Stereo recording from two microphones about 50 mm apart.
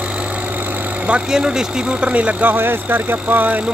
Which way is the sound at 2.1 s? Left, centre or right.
Right.